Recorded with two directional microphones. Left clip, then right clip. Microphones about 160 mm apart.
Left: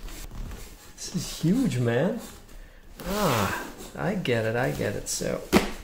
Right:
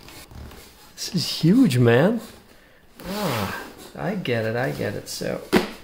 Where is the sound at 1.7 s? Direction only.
45° right (ahead or behind).